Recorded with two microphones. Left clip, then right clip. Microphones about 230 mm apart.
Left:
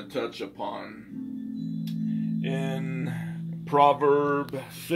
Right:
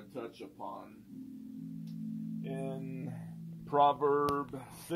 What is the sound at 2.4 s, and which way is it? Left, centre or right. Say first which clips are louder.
Music: left 9 dB; right.